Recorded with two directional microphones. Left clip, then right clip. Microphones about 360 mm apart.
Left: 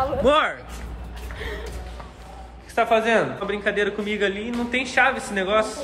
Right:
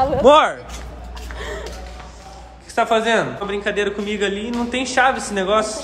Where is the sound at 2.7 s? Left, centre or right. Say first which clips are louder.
Right 2 dB; centre.